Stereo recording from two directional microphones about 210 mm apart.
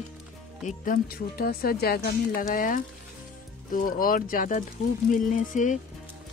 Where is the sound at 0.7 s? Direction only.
40° left (ahead or behind).